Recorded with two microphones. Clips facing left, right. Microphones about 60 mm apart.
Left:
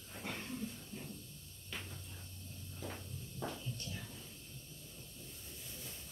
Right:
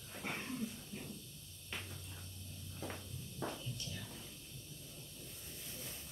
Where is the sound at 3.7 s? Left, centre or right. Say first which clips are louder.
Left 1 dB; left.